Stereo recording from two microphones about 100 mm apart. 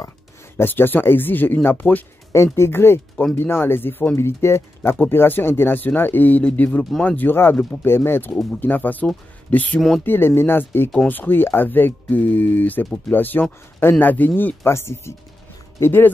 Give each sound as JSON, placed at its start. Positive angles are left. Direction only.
{"t": 0.6, "sound": "speech", "side_deg": 20}
{"t": 9.8, "sound": "speech", "side_deg": 0}
{"t": 10.0, "sound": "speech", "side_deg": 20}